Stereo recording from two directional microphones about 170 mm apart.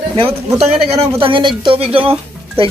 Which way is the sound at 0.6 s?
40° right (ahead or behind).